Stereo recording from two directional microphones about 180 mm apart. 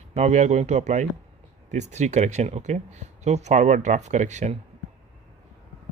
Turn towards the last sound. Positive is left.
turn(degrees=-40)  # may be behind; listen again after turning